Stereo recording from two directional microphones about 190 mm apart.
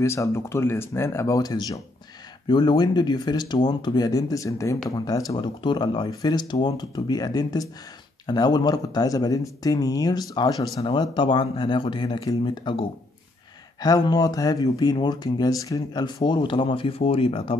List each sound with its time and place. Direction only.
0.0 s speech: 15° left (ahead or behind)